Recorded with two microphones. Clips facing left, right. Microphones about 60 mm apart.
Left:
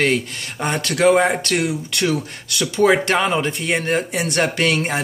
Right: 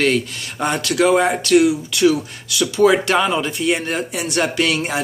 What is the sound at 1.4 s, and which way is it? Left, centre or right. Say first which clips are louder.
Speech: right 7 dB; left.